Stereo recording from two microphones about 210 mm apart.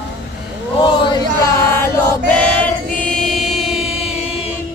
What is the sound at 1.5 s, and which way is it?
Choir, 10° left (ahead or behind).